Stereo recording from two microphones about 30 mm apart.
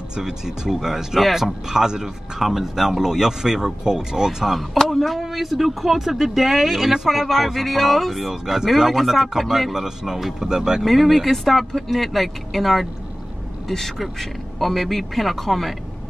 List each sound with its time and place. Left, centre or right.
0.1 s speech: centre
2.4 s speech: centre
4.6 s speech: centre
5.2 s speech: centre
7.1 s speech: centre
8.3 s speech: centre
10.8 s speech: centre